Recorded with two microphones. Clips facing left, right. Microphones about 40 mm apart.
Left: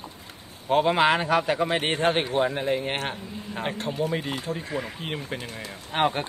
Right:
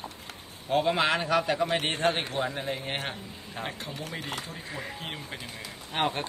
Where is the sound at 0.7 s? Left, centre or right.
Left.